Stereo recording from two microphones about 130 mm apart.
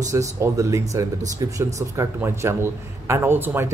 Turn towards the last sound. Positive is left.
turn(degrees=-15)  # may be behind; listen again after turning